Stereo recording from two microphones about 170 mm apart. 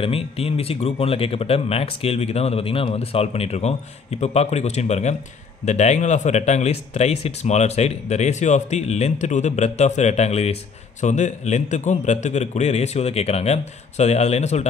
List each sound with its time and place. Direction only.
0.0 s speech: 35° left (ahead or behind)